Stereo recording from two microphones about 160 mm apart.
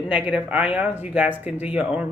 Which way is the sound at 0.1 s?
10° right (ahead or behind).